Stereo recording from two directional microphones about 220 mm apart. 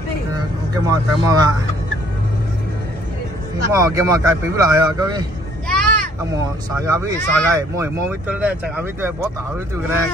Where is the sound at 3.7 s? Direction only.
15° right (ahead or behind).